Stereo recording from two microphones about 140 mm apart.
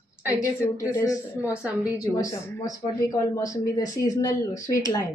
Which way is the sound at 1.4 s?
5° right (ahead or behind).